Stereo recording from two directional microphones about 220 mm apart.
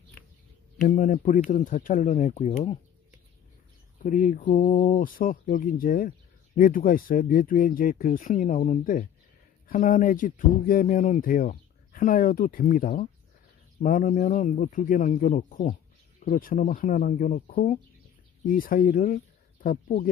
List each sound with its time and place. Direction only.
0.8 s speech: 35° left (ahead or behind)
4.0 s speech: 35° left (ahead or behind)